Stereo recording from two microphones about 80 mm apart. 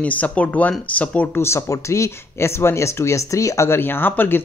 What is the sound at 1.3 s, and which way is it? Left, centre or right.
Speech, left.